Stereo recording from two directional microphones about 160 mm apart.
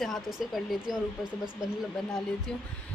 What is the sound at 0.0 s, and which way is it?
Speech, centre (ahead or behind).